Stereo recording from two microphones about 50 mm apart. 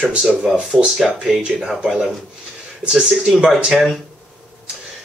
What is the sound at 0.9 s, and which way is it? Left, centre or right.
Speech, centre.